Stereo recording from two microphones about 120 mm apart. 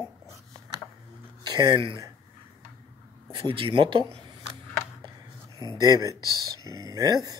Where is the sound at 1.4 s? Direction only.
35° right (ahead or behind).